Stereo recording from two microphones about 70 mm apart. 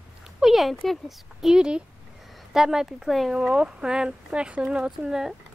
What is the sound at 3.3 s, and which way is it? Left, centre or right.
A child's voice, centre.